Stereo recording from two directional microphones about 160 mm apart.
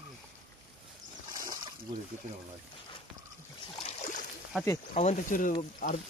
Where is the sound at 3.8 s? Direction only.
50° left (ahead or behind).